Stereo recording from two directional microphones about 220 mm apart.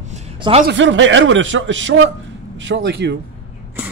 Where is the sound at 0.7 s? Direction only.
60° right (ahead or behind).